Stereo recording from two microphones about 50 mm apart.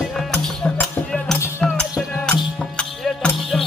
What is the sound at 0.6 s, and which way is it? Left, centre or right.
Music, left.